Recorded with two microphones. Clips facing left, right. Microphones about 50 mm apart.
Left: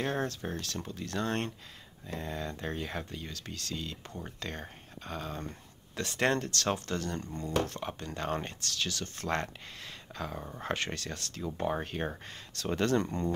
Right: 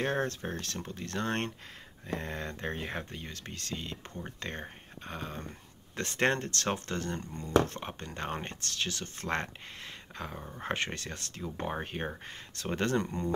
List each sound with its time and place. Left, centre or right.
0.0 s speech: right
5.9 s speech: right
10.6 s speech: right